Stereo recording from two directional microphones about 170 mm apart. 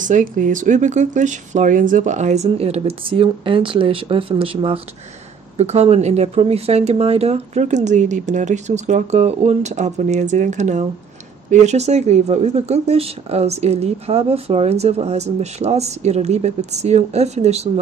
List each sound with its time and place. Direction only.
0.0 s speech: 50° right (ahead or behind)